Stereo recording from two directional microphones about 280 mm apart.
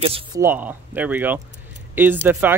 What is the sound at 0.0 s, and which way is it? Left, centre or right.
Speech, centre.